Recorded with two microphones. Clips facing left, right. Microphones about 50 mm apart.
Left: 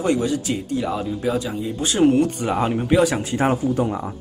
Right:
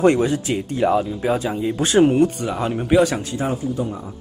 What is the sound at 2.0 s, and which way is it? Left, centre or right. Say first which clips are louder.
Speech: right 2 dB; centre.